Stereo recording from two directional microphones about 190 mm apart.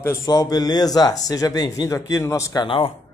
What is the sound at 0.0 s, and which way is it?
Speech, 15° left (ahead or behind).